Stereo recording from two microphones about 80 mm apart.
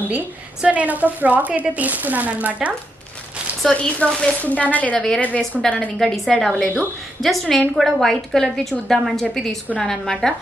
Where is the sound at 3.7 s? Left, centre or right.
Centre.